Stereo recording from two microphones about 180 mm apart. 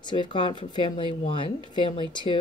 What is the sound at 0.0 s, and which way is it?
A woman's voice, 25° left (ahead or behind).